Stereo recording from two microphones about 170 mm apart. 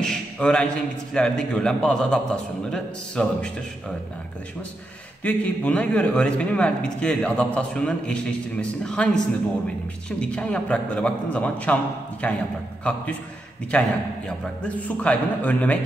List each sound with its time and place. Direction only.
0.0 s a sound: 5° left (ahead or behind)
1.1 s a man's voice: 5° left (ahead or behind)
5.2 s a man's voice: 10° left (ahead or behind)
13.7 s a man's voice: 5° left (ahead or behind)